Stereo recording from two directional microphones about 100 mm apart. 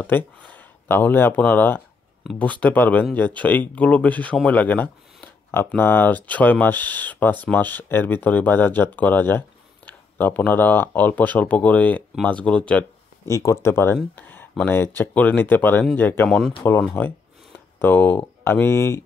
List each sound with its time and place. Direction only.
0.0 s speech: 15° left (ahead or behind)
4.5 s a sound: 15° left (ahead or behind)
5.8 s speech: 20° left (ahead or behind)
13.2 s speech: 30° left (ahead or behind)
14.1 s a sound: 20° left (ahead or behind)
14.6 s speech: 20° left (ahead or behind)
16.3 s speech: 5° left (ahead or behind)
17.0 s speech: 20° left (ahead or behind)